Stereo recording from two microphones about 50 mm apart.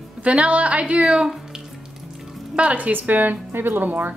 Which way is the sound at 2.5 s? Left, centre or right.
Right.